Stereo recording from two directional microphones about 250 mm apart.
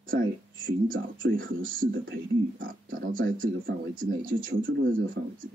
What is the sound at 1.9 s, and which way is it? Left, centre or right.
Speech, right.